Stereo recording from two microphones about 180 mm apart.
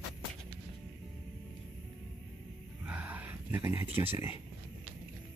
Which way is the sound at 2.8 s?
10° right (ahead or behind).